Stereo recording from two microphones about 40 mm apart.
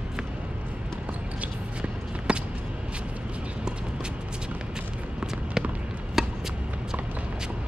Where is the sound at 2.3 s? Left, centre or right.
Right.